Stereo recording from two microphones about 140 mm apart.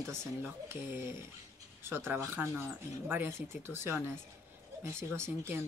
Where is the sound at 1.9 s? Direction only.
15° right (ahead or behind).